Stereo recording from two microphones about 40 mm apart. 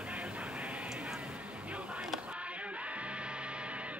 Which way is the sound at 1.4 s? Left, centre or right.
Right.